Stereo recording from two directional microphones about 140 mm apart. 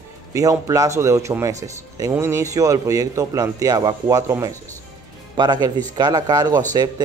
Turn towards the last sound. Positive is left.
turn(degrees=-30)  # may be behind; listen again after turning